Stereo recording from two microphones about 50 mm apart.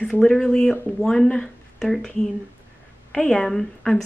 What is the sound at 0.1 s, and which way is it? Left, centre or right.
A woman's voice, centre.